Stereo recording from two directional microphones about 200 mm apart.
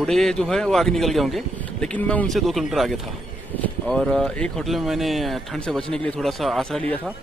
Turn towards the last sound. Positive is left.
turn(degrees=0)  # may be behind; listen again after turning